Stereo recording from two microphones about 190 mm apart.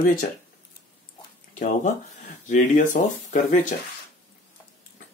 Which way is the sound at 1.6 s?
40° left (ahead or behind).